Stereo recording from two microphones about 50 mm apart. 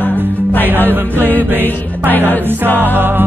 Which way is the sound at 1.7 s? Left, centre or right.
Left.